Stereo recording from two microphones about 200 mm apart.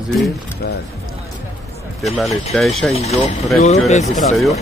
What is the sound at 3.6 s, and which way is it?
Speech, 30° left (ahead or behind).